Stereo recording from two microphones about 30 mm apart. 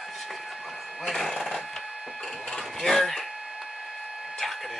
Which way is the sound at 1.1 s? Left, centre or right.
Centre.